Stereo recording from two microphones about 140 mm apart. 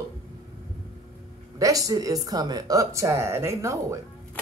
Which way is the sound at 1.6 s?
25° right (ahead or behind).